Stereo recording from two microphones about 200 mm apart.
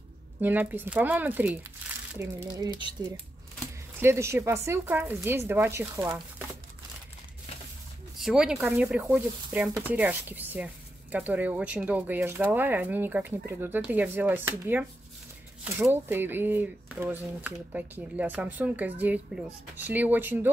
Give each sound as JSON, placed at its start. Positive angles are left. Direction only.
{"t": 0.4, "sound": "speech", "side_deg": -10}
{"t": 8.2, "sound": "speech", "side_deg": -5}